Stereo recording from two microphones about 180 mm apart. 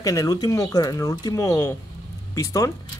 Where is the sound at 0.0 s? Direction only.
20° left (ahead or behind).